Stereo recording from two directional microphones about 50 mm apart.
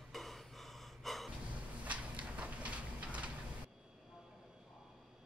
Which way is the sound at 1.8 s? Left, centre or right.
Right.